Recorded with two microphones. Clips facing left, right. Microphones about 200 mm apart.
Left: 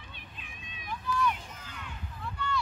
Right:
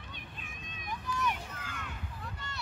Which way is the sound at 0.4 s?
45° right (ahead or behind).